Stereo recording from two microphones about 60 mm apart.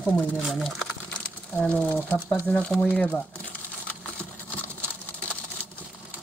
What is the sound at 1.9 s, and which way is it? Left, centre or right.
Speech, left.